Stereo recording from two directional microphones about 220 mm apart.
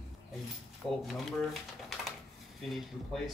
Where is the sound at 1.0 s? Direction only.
Centre (ahead or behind).